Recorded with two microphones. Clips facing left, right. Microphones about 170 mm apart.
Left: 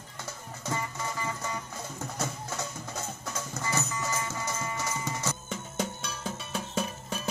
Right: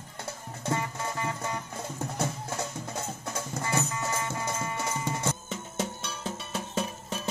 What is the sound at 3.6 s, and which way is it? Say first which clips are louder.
Music: right 2 dB; 55° right (ahead or behind).